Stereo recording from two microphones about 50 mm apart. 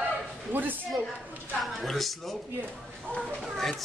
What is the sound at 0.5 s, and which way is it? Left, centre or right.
Speech, right.